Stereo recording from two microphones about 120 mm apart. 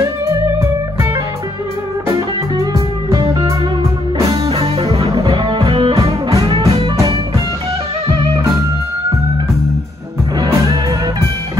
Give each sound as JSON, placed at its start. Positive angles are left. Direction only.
{"t": 0.0, "sound": "music", "side_deg": -25}
{"t": 3.1, "sound": "music", "side_deg": -45}
{"t": 10.4, "sound": "music", "side_deg": -30}